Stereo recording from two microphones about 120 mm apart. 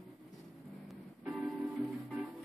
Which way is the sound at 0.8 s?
Centre (ahead or behind).